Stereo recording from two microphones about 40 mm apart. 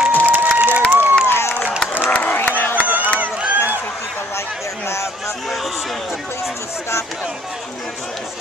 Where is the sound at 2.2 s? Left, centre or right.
Left.